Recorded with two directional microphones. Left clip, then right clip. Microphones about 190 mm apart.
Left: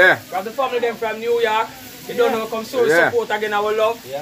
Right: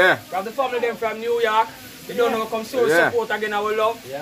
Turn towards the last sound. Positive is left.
turn(degrees=5)  # may be behind; listen again after turning